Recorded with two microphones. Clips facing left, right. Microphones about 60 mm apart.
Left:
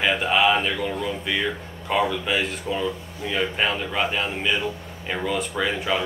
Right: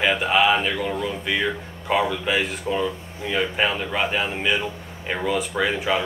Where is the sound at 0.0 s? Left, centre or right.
Centre.